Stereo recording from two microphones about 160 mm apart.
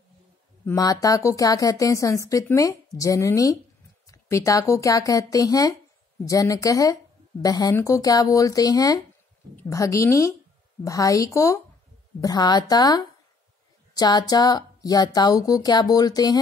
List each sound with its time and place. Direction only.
0.7 s a woman's voice: 20° left (ahead or behind)